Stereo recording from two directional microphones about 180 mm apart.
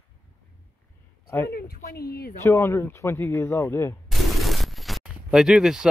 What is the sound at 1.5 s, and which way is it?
Speech, 55° left (ahead or behind).